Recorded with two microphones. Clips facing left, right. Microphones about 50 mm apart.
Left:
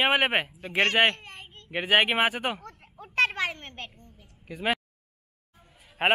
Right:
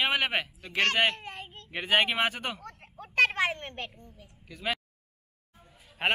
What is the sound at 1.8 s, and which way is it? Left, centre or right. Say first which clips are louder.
Speech: left 3 dB; centre.